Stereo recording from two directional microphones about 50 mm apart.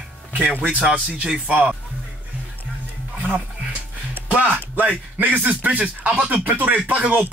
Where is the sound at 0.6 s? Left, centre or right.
Right.